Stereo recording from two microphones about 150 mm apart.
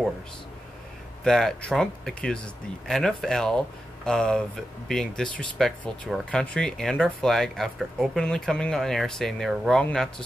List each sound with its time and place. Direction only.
1.2 s speech: 5° left (ahead or behind)